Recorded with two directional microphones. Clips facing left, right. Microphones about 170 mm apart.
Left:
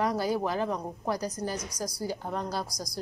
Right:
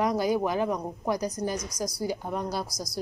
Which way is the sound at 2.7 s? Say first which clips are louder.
Right 2 dB; 15° left (ahead or behind).